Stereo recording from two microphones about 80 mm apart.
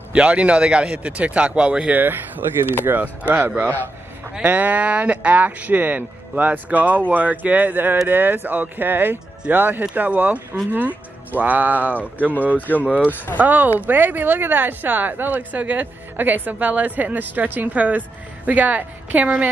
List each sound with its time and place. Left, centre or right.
0.1 s a man's voice: centre
2.0 s speech: right
12.5 s speech: left
13.4 s speech: right